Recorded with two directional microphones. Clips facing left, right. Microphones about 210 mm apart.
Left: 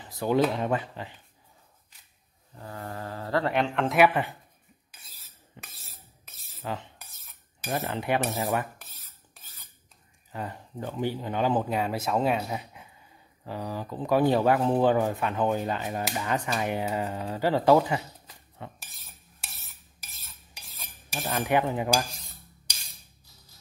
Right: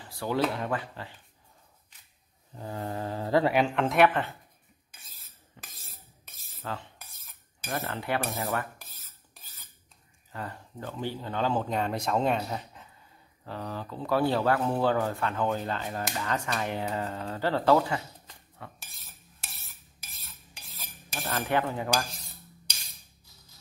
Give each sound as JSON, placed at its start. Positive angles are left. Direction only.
{"t": 0.0, "sound": "a sound", "side_deg": 20}
{"t": 0.6, "sound": "speech", "side_deg": 20}
{"t": 2.5, "sound": "speech", "side_deg": -20}
{"t": 5.0, "sound": "cutlery", "side_deg": 5}
{"t": 7.7, "sound": "speech", "side_deg": 15}
{"t": 10.3, "sound": "speech", "side_deg": 20}
{"t": 18.6, "sound": "cutlery", "side_deg": 20}
{"t": 21.3, "sound": "speech", "side_deg": 15}